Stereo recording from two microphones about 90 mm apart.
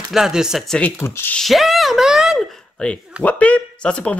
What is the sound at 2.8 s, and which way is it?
Speech, 10° left (ahead or behind).